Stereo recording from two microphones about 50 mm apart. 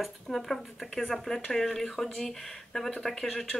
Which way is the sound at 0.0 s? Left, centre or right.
Centre.